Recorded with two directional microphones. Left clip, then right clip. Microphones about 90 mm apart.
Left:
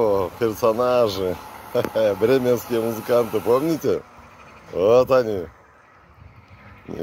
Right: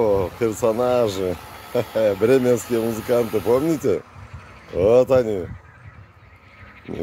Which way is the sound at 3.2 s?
40° right (ahead or behind).